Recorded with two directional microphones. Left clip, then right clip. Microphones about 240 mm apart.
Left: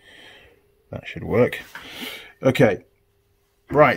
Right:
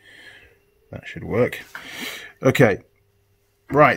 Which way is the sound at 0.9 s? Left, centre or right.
Centre.